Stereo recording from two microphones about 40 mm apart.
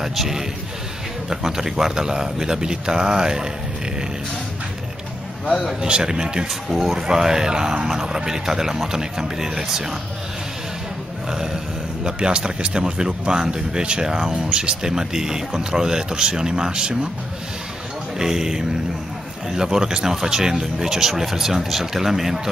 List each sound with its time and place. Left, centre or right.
0.0 s speech: centre
5.8 s speech: right
11.2 s speech: centre
18.2 s speech: centre